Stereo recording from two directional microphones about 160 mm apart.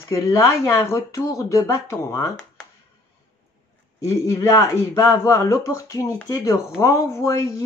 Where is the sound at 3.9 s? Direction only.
20° left (ahead or behind).